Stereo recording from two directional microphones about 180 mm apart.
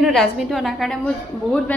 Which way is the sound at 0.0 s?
Centre (ahead or behind).